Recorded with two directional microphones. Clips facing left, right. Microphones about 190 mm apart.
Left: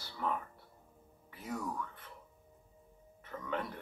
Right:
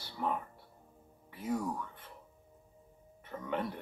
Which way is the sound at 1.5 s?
25° right (ahead or behind).